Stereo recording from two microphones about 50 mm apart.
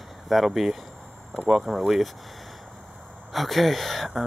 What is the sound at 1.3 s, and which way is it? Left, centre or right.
Speech, right.